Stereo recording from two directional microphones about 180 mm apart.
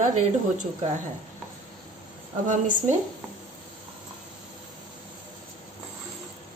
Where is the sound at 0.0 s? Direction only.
45° right (ahead or behind).